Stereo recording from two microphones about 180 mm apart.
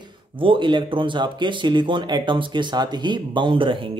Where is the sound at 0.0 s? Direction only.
30° right (ahead or behind).